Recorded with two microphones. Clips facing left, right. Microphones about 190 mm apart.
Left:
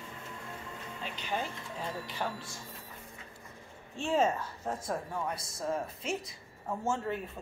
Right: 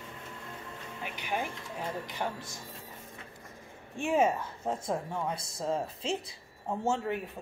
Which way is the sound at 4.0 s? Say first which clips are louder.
Right 2 dB; 15° right (ahead or behind).